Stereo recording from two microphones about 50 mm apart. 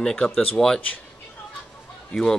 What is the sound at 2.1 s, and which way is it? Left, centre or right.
Speech, centre.